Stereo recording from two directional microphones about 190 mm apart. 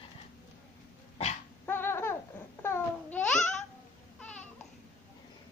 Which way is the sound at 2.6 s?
10° left (ahead or behind).